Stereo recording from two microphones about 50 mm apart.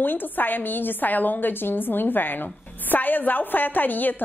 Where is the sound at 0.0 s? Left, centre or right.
Left.